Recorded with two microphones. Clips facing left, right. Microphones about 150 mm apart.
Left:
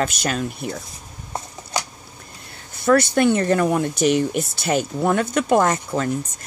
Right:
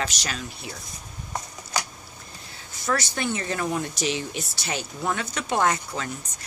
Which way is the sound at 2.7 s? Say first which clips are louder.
Left 11 dB; 60° left (ahead or behind).